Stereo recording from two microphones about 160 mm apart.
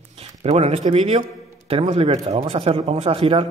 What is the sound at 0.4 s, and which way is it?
A man's voice, 40° right (ahead or behind).